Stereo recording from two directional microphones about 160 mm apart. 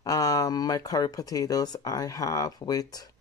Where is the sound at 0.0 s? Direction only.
20° left (ahead or behind).